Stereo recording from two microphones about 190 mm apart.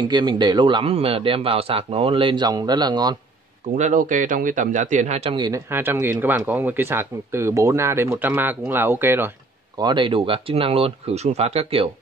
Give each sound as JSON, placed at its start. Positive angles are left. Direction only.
{"t": 0.0, "sound": "a man's voice", "side_deg": -25}
{"t": 3.7, "sound": "a man's voice", "side_deg": -40}
{"t": 5.3, "sound": "a man's voice", "side_deg": -20}
{"t": 5.7, "sound": "speech", "side_deg": -10}
{"t": 9.8, "sound": "a man's voice", "side_deg": -25}